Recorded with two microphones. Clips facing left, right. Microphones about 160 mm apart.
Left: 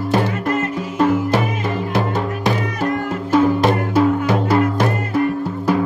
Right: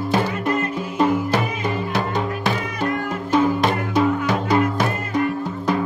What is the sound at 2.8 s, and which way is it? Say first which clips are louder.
Music: left 3 dB; 5° left (ahead or behind).